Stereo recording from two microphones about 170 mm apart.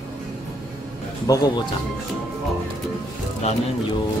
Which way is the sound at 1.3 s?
20° left (ahead or behind).